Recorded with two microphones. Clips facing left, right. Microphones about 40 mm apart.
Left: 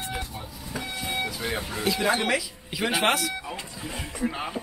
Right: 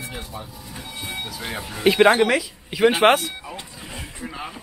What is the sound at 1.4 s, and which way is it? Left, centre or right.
Speech, centre.